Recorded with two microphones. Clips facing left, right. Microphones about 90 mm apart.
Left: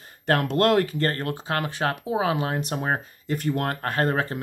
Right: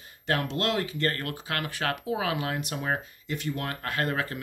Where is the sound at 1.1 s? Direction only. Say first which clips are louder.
Left 5 dB; 30° left (ahead or behind).